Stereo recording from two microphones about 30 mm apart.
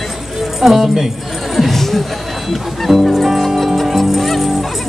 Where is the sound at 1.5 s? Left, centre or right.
Centre.